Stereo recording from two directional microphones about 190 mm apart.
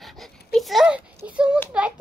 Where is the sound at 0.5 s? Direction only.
Centre (ahead or behind).